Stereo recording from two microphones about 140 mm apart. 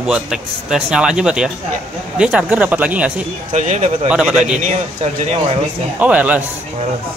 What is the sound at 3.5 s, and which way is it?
Speech, 60° right (ahead or behind).